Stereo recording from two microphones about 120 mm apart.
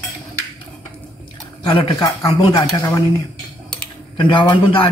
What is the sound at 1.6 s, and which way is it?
Speech, 45° left (ahead or behind).